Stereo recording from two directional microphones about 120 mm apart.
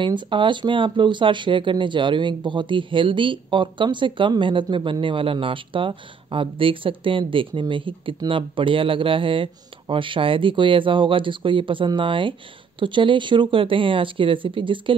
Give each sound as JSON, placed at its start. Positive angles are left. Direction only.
{"t": 0.0, "sound": "speech", "side_deg": -45}